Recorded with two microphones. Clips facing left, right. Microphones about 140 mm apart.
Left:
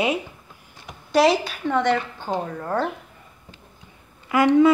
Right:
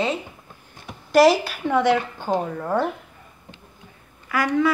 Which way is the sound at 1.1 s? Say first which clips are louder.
Right 3 dB; centre (ahead or behind).